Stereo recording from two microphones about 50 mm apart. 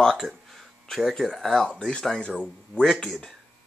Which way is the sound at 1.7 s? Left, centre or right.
Centre.